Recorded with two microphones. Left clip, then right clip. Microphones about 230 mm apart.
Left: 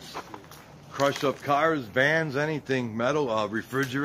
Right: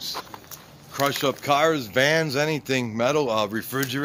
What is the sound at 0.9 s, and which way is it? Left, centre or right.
Speech, right.